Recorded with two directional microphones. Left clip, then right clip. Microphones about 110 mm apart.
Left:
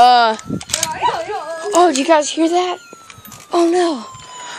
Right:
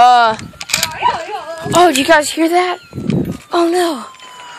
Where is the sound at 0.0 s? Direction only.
30° left (ahead or behind).